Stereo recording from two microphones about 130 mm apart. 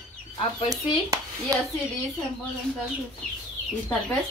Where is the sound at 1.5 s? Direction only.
25° right (ahead or behind).